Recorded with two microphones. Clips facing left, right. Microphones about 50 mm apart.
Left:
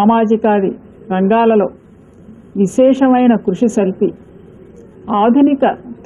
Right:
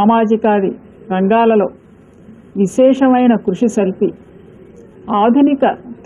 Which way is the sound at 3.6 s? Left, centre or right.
Right.